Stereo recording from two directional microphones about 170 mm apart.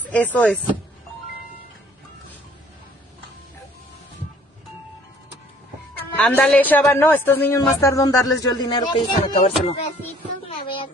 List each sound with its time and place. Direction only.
0.0 s speech: 10° left (ahead or behind)
5.9 s speech: 10° left (ahead or behind); by 8.9 s 25° left (ahead or behind)
9.2 s music: 35° left (ahead or behind)